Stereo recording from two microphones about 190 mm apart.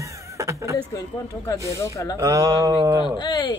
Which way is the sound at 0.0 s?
15° right (ahead or behind).